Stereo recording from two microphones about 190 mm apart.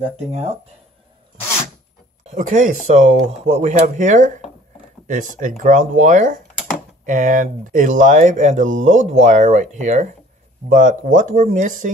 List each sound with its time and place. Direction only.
0.3 s speech: 35° right (ahead or behind)
2.2 s speech: 40° right (ahead or behind)